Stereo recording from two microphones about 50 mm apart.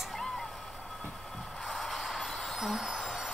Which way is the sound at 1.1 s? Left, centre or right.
Centre.